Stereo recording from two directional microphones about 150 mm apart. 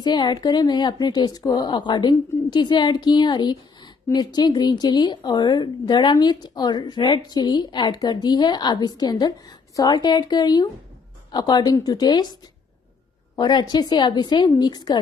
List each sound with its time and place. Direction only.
0.0 s speech: 30° left (ahead or behind)
13.4 s speech: 30° left (ahead or behind)